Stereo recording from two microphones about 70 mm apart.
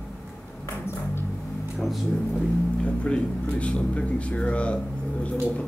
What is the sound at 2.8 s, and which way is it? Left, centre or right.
Speech, centre.